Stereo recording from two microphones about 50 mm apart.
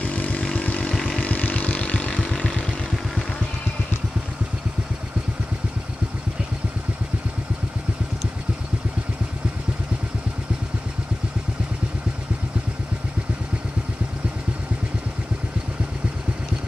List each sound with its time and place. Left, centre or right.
0.0 s vehicle: left